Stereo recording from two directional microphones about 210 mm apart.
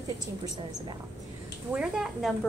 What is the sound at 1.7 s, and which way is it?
Speech, 5° right (ahead or behind).